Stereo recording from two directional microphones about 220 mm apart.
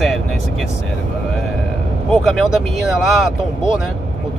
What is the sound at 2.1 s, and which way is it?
Speech, centre (ahead or behind).